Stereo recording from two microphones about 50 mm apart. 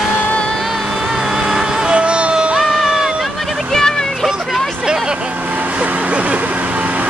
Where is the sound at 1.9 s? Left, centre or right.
Right.